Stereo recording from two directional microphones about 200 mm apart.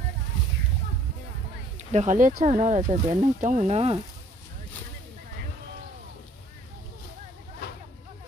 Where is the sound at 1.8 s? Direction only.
35° right (ahead or behind).